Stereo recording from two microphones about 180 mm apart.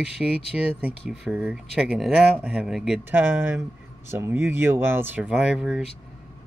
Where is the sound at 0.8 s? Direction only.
Centre (ahead or behind).